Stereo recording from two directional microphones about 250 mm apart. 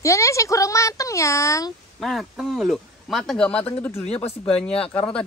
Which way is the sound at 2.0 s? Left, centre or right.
Centre.